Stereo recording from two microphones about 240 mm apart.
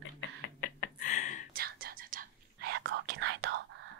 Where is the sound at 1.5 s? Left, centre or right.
Right.